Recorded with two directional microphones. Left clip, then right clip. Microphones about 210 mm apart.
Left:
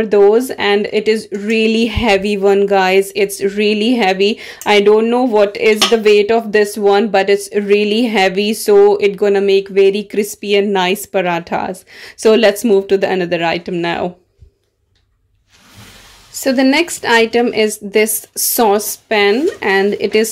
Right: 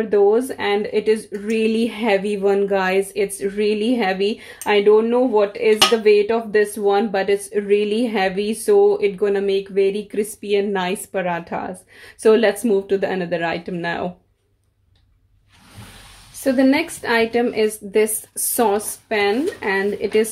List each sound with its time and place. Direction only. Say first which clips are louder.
0.0 s speech: left 6 dB; 45° left (ahead or behind)
16.4 s speech: left 4 dB; 45° left (ahead or behind)